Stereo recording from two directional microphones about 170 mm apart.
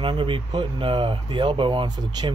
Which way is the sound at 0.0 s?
30° right (ahead or behind).